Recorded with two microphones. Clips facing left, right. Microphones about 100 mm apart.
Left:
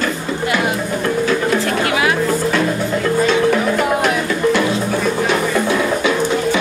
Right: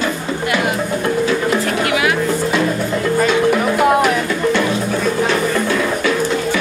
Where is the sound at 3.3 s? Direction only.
5° right (ahead or behind).